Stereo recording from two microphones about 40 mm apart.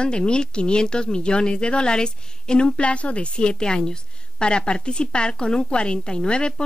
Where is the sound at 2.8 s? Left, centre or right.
Left.